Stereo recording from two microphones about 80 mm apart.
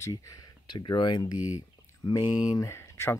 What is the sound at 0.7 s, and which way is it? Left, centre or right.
Speech, left.